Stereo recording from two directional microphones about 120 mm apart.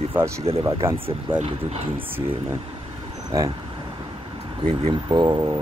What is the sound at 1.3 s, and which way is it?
Speech, 45° right (ahead or behind).